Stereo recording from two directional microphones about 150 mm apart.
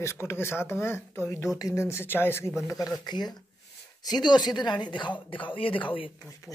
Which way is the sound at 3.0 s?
30° left (ahead or behind).